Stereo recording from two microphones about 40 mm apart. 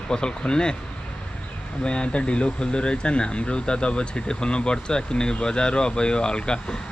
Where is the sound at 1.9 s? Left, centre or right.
Left.